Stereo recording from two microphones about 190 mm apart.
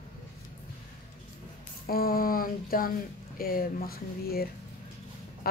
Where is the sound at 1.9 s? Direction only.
50° left (ahead or behind).